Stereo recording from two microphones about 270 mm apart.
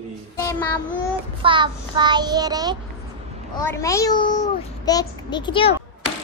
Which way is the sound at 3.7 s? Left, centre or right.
Centre.